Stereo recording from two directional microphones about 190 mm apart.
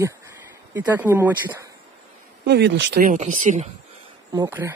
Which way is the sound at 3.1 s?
40° right (ahead or behind).